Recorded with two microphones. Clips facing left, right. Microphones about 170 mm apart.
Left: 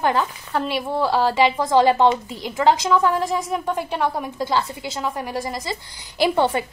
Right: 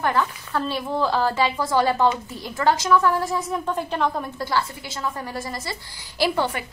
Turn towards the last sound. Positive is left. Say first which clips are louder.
# left 4 dB
turn(degrees=25)  # may be behind; listen again after turning